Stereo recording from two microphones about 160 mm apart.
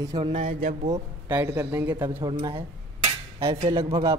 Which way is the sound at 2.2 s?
25° right (ahead or behind).